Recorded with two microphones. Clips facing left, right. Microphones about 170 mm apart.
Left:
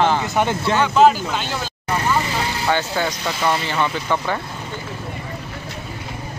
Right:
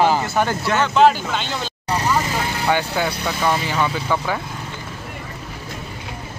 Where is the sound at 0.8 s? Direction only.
5° left (ahead or behind).